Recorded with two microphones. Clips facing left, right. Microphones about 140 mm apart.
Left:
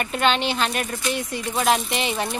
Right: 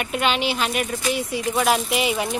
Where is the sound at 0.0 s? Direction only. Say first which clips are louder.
Left 1 dB; 5° right (ahead or behind).